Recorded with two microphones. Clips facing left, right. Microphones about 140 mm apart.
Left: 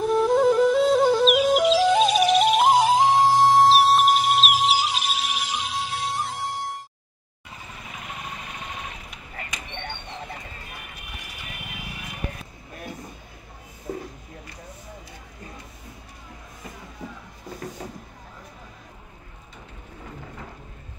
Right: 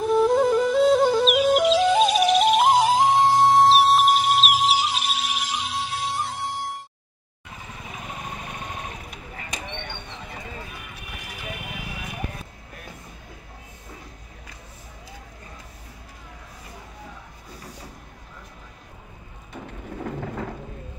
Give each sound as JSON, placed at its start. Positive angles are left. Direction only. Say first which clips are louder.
{"t": 0.0, "sound": "music", "louder": "even", "side_deg": 0}
{"t": 8.6, "sound": "a sound", "louder": "even", "side_deg": -45}
{"t": 19.5, "sound": "rain", "louder": "right 10 dB", "side_deg": -55}